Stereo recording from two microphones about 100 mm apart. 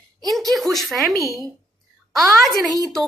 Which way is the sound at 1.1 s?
30° right (ahead or behind).